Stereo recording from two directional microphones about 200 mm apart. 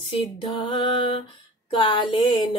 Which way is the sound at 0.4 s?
25° left (ahead or behind).